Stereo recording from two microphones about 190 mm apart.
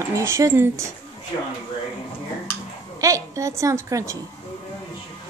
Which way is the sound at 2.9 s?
15° right (ahead or behind).